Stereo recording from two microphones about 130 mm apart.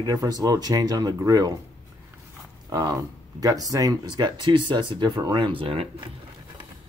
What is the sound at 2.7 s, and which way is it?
Speech, 30° right (ahead or behind).